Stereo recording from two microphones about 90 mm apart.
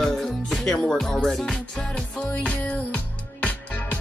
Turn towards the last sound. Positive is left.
turn(degrees=15)  # may be behind; listen again after turning